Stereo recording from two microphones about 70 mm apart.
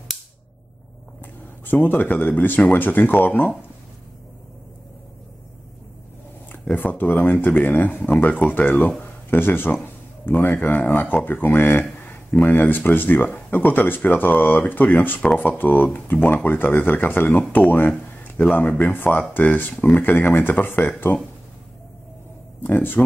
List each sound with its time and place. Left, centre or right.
1.8 s speech: left
6.5 s speech: left
8.7 s speech: centre
9.0 s a man's voice: left
22.6 s speech: left